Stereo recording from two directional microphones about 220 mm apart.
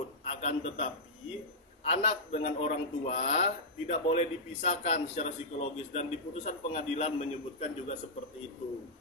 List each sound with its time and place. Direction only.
0.3 s a man's voice: 30° left (ahead or behind)
1.9 s a man's voice: 30° left (ahead or behind)